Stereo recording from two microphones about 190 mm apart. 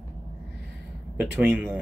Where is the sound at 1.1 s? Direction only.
5° right (ahead or behind).